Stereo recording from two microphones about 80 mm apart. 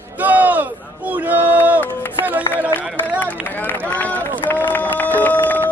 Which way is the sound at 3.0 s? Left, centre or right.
Left.